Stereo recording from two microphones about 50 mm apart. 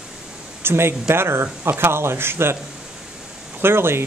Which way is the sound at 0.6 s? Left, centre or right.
Right.